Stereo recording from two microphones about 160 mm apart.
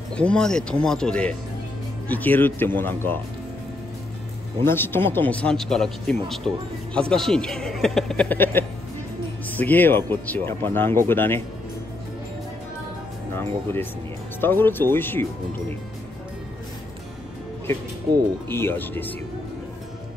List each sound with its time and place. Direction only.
0.1 s a man's voice: 5° left (ahead or behind)
4.6 s a man's voice: 15° left (ahead or behind)
13.3 s speech: 15° left (ahead or behind)
18.5 s speech: 15° left (ahead or behind)